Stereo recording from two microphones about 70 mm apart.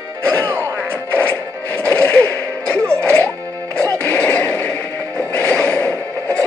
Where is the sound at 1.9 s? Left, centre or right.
Centre.